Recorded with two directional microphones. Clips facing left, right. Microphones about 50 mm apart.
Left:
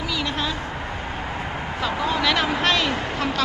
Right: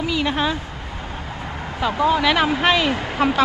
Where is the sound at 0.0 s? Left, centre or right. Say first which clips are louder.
Right 5 dB; right.